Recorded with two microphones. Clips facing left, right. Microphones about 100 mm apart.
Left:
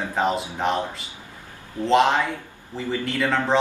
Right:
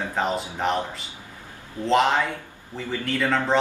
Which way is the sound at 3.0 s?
10° left (ahead or behind).